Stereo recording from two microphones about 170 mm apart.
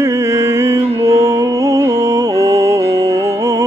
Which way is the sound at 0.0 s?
20° right (ahead or behind).